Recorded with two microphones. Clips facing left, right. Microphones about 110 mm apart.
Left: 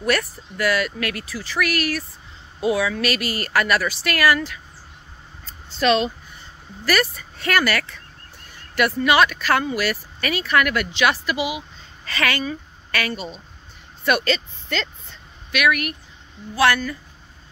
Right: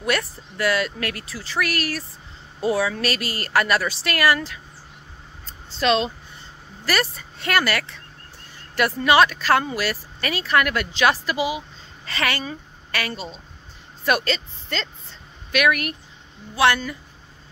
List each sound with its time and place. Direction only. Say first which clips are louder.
0.0 s speech: left 2 dB; 25° right (ahead or behind)
5.7 s a woman's voice: left 2 dB; 25° right (ahead or behind)